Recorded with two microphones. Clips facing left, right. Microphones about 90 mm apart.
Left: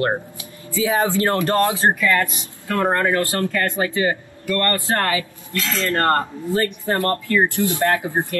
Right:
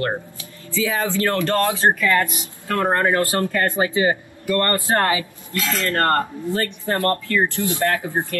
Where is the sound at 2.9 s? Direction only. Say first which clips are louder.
Right 1 dB; 20° right (ahead or behind).